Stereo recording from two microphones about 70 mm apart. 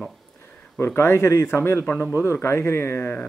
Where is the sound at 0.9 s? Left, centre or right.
Left.